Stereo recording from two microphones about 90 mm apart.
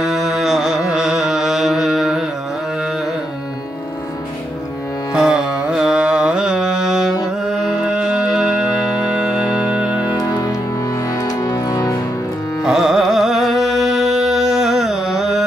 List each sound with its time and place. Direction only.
0.0 s carnatic music: centre (ahead or behind)
5.1 s music: 10° right (ahead or behind)
10.0 s music: 40° left (ahead or behind)
12.6 s carnatic music: 5° right (ahead or behind)